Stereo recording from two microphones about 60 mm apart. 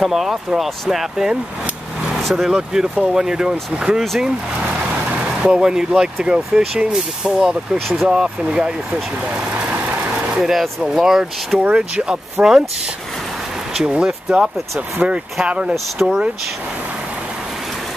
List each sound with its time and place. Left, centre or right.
0.0 s speech: centre
5.4 s speech: centre
10.3 s speech: centre
11.5 s speech: right
13.7 s speech: centre
15.7 s speech: centre